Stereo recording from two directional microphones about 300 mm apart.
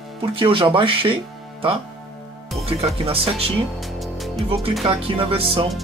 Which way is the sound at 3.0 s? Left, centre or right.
Centre.